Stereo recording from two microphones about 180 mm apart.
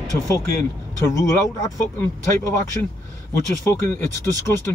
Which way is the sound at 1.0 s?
15° left (ahead or behind).